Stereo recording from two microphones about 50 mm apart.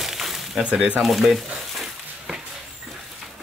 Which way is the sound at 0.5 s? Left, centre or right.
Centre.